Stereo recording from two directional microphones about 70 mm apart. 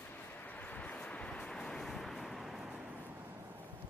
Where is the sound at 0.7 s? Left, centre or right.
Left.